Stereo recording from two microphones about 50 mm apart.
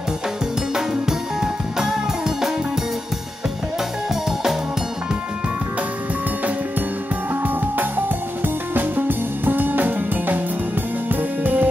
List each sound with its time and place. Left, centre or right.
1.4 s music: centre
8.7 s music: right
11.4 s music: right